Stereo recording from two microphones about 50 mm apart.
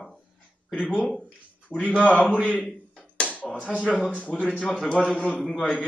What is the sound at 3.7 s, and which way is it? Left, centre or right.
Speech, right.